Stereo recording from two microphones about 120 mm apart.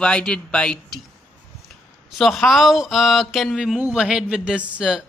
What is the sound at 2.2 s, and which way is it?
A man's voice, centre (ahead or behind).